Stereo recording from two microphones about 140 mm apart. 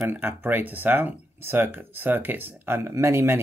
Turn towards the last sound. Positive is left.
turn(degrees=-20)  # may be behind; listen again after turning